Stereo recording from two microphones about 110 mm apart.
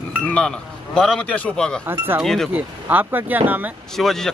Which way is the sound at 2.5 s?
15° right (ahead or behind).